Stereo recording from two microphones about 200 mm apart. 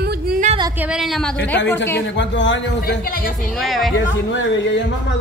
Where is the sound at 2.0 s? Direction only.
65° left (ahead or behind).